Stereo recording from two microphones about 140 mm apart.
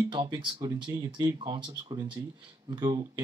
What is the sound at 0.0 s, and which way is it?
Speech, 30° right (ahead or behind).